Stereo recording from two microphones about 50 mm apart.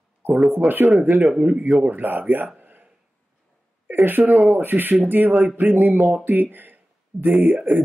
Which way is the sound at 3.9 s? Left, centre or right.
Right.